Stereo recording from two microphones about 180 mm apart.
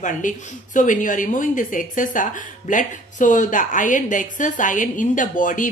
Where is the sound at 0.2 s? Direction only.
45° left (ahead or behind).